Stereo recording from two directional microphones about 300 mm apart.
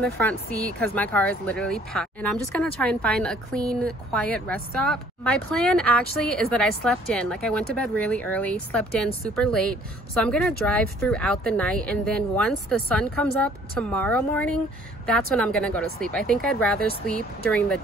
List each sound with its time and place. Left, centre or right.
0.0 s a woman's voice: centre